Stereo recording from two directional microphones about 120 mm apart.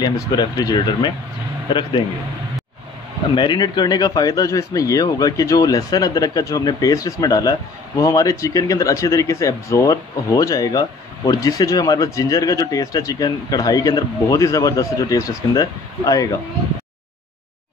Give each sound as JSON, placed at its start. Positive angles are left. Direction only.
{"t": 0.0, "sound": "speech", "side_deg": 35}
{"t": 3.3, "sound": "speech", "side_deg": 40}